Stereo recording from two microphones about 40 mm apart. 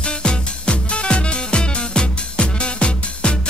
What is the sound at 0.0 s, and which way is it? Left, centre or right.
Music, left.